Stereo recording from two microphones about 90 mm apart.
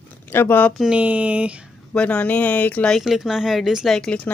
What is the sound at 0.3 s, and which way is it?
Speech, 25° left (ahead or behind).